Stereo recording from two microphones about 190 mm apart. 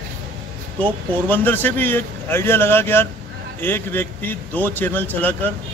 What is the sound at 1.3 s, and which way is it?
A man's voice, 10° left (ahead or behind).